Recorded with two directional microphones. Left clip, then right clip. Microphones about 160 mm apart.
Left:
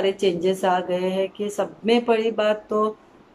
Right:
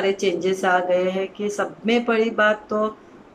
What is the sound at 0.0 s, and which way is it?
Speech, 20° left (ahead or behind).